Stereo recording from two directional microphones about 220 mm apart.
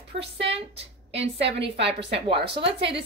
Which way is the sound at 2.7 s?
50° right (ahead or behind).